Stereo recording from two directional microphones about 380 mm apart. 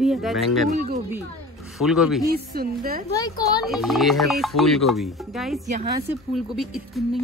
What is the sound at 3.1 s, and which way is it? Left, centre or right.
Speech, centre.